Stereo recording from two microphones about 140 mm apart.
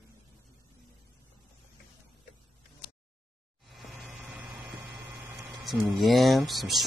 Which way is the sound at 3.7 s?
Centre (ahead or behind).